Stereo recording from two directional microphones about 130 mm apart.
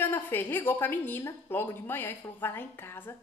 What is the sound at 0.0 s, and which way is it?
A woman's voice, 15° left (ahead or behind).